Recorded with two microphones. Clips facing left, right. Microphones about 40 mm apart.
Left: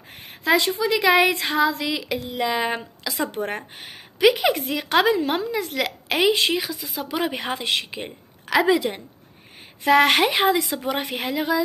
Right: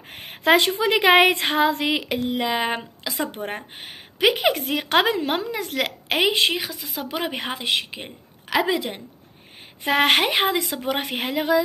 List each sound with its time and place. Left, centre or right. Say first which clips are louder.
0.1 s a woman's voice: right 2 dB; right
2.3 s a woman's voice: left 2 dB; right
7.5 s a woman's voice: even; centre
10.9 s a woman's voice: even; right